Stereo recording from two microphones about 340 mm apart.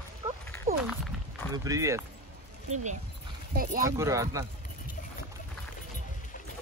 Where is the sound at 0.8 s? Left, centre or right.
Centre.